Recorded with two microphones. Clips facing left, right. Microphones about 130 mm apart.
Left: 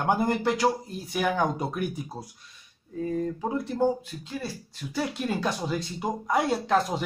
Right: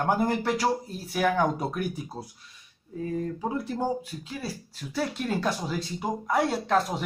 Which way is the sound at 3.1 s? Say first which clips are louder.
Left 1 dB; 5° right (ahead or behind).